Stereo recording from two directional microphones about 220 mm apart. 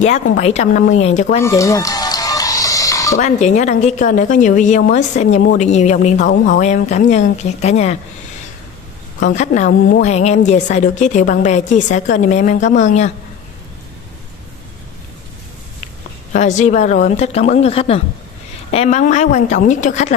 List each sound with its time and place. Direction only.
0.0 s a woman's voice: 30° left (ahead or behind)
1.4 s music: 15° left (ahead or behind)
3.2 s a woman's voice: 30° left (ahead or behind)
9.2 s a woman's voice: 30° left (ahead or behind)
16.3 s a woman's voice: 35° left (ahead or behind)